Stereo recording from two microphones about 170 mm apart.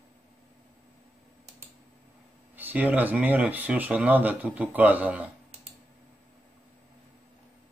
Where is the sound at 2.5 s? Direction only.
10° right (ahead or behind).